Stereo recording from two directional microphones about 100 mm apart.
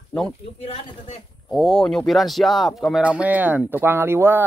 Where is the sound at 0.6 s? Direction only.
90° left.